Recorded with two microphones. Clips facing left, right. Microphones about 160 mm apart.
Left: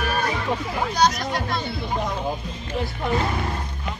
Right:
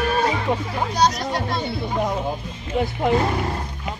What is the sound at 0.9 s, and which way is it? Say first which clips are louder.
Music: right 1 dB; 30° right (ahead or behind).